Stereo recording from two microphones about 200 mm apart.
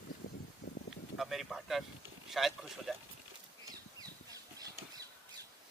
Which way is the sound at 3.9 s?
20° right (ahead or behind).